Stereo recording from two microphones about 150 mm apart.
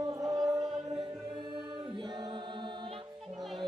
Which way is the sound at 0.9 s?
35° right (ahead or behind).